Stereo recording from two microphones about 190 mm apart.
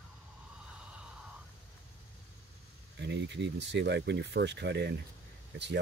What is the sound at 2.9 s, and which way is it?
Speech, 65° right (ahead or behind).